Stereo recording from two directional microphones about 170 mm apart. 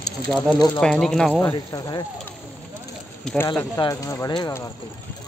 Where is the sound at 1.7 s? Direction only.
25° left (ahead or behind).